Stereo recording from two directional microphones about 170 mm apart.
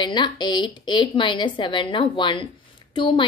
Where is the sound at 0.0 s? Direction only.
25° left (ahead or behind).